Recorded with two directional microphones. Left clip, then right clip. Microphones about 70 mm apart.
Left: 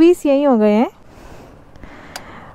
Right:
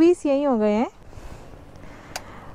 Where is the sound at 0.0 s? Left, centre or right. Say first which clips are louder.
Left 6 dB; left.